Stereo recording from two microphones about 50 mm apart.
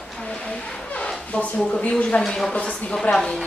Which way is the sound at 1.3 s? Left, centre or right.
Left.